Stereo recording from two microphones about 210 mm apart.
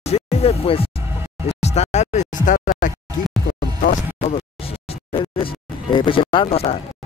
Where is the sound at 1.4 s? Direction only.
30° left (ahead or behind).